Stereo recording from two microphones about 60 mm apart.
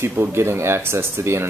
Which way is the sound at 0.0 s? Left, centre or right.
Right.